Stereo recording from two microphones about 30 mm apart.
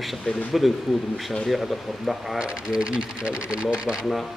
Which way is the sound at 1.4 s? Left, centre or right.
Centre.